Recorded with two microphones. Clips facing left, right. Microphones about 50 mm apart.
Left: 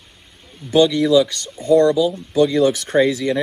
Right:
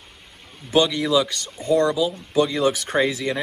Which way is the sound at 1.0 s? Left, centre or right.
Centre.